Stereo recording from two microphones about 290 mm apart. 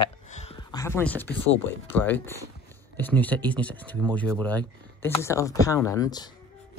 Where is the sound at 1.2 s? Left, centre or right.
Left.